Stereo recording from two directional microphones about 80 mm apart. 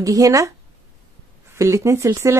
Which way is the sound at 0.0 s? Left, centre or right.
Right.